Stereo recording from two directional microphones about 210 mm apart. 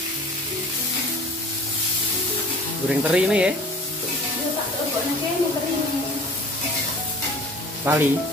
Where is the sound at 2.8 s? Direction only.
5° right (ahead or behind).